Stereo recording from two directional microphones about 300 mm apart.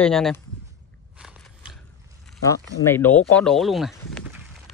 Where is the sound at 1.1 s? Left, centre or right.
Centre.